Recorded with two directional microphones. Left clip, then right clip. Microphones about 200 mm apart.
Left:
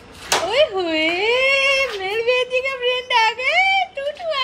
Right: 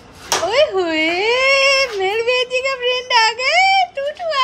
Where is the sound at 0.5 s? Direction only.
5° right (ahead or behind).